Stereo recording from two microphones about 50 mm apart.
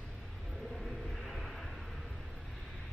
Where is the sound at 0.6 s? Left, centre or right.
Centre.